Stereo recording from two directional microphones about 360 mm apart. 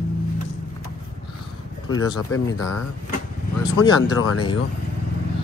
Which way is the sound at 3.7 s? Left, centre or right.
Left.